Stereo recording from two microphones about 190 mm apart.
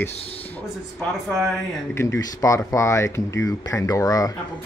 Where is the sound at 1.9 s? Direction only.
15° left (ahead or behind).